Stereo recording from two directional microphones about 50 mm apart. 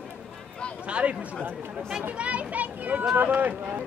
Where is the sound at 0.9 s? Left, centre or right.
Right.